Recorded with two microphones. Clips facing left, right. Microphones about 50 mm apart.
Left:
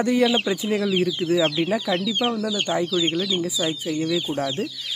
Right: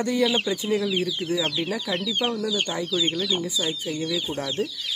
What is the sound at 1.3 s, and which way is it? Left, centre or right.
Speech, left.